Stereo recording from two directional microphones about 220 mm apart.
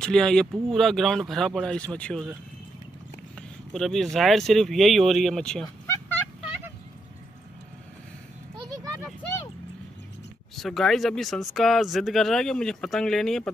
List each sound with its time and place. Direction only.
0.0 s speech: 5° left (ahead or behind)
3.3 s speech: centre (ahead or behind)
8.6 s a sound: 15° right (ahead or behind)
10.5 s speech: centre (ahead or behind)